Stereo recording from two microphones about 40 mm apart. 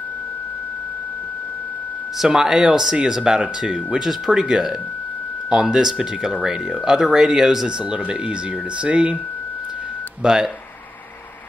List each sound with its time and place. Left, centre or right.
2.2 s speech: centre
7.6 s speech: right
10.2 s speech: centre